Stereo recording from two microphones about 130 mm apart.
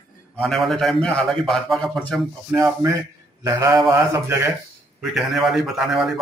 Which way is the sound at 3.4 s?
25° right (ahead or behind).